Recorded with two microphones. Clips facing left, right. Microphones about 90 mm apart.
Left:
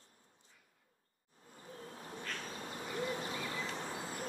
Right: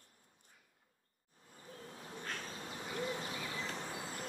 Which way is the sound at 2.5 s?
40° left (ahead or behind).